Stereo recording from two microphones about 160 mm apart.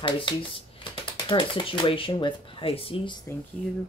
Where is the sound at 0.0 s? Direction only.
30° left (ahead or behind).